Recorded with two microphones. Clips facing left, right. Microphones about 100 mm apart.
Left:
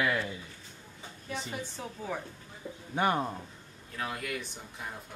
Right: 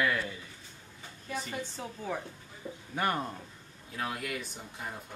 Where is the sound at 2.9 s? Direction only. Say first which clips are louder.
Left 3 dB; 20° left (ahead or behind).